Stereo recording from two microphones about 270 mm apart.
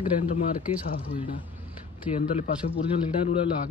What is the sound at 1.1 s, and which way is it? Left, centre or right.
A man's voice, centre.